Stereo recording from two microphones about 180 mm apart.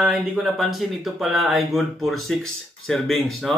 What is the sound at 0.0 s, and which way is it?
Speech, centre (ahead or behind).